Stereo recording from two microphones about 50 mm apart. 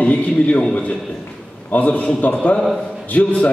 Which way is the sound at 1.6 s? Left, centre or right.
Left.